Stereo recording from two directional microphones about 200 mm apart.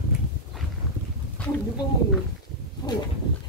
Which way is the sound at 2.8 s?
20° left (ahead or behind).